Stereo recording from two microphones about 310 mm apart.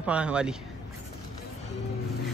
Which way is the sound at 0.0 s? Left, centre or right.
Centre.